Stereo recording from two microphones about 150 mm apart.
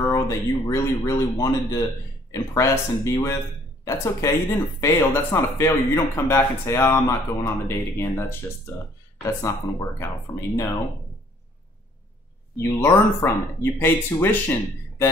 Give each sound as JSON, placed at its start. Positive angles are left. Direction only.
{"t": 0.0, "sound": "speech", "side_deg": 25}
{"t": 12.5, "sound": "speech", "side_deg": 20}